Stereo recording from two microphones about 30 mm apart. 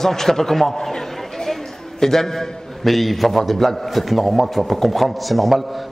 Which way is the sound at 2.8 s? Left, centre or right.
Centre.